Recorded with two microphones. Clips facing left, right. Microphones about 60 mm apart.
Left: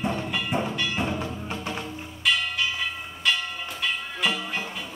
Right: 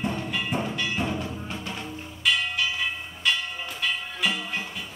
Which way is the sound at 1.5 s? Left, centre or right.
Left.